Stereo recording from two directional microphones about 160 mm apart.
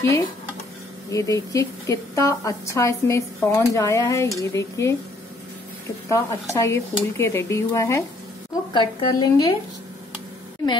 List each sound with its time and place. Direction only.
0.0 s a woman's voice: 20° left (ahead or behind)
6.0 s a woman's voice: 20° left (ahead or behind)